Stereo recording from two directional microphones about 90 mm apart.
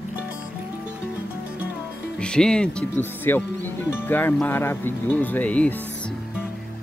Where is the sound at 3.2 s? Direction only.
20° left (ahead or behind).